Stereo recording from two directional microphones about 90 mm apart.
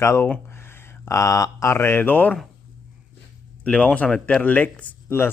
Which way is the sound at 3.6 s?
15° left (ahead or behind).